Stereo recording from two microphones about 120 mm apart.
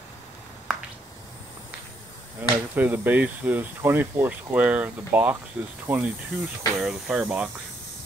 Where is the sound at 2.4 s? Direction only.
15° right (ahead or behind).